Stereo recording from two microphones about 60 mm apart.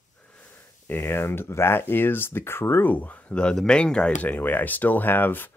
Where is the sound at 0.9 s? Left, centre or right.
Left.